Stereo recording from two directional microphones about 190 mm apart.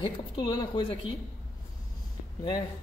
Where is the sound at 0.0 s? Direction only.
25° left (ahead or behind).